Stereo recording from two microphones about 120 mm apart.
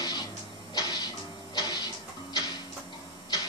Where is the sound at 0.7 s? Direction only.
35° left (ahead or behind).